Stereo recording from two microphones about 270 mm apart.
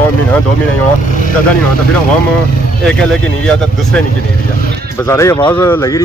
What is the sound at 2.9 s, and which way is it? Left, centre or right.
Speech, centre.